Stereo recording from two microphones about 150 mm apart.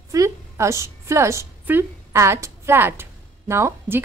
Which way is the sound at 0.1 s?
20° right (ahead or behind).